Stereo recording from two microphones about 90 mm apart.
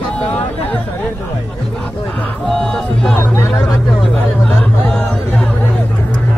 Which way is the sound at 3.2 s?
20° left (ahead or behind).